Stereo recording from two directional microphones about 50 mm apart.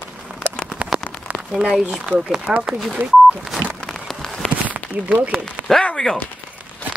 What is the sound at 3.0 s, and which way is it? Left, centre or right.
Speech, right.